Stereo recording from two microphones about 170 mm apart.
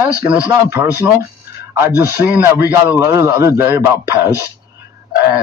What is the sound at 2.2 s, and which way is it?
A man's voice, 10° right (ahead or behind).